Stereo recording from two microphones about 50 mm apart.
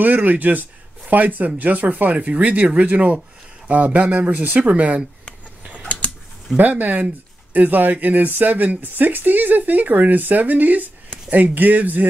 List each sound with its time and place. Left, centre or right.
0.0 s speech: right
6.5 s speech: right